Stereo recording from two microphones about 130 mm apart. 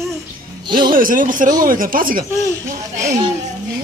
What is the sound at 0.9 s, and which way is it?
Speech, 90° right.